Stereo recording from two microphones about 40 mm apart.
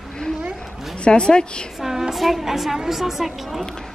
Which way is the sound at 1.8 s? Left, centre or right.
Centre.